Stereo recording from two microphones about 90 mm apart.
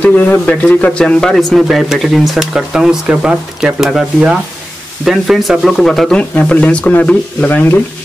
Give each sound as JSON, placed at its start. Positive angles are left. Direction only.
{"t": 0.0, "sound": "speech", "side_deg": 15}
{"t": 6.3, "sound": "speech", "side_deg": 15}